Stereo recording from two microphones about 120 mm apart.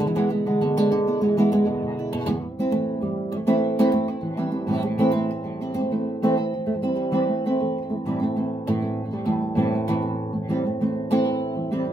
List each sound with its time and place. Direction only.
0.1 s music: 20° left (ahead or behind)
0.7 s music: 30° left (ahead or behind)
3.4 s music: 25° left (ahead or behind)
9.6 s music: 25° left (ahead or behind)